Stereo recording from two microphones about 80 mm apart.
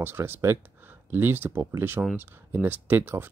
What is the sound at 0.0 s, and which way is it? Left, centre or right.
Speech, right.